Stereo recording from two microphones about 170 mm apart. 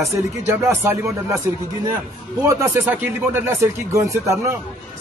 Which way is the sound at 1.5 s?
15° right (ahead or behind).